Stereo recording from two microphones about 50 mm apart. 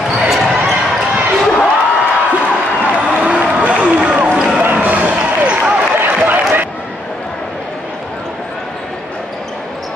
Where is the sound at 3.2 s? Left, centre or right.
Right.